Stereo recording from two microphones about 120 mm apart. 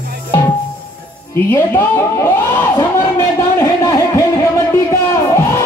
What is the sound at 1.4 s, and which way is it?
A man's voice, 20° left (ahead or behind).